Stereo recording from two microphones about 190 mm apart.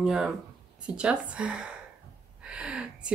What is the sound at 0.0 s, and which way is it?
Speech, 5° right (ahead or behind).